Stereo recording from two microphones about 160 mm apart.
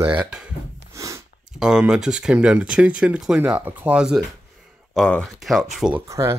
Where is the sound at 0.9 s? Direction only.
20° right (ahead or behind).